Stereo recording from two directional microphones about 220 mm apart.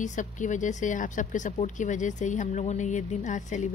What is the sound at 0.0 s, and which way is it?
Speech, 35° left (ahead or behind).